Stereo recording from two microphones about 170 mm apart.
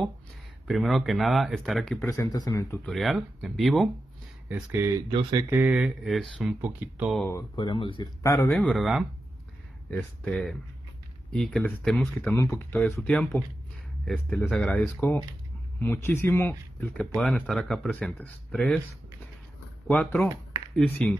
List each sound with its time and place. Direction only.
0.7 s speech: centre (ahead or behind)
2.0 s speech: 20° left (ahead or behind)
2.8 s speech: centre (ahead or behind)
4.5 s speech: 10° right (ahead or behind)
7.5 s speech: 30° left (ahead or behind)
8.2 s speech: 15° left (ahead or behind)
8.5 s speech: centre (ahead or behind)
19.9 s speech: 5° left (ahead or behind)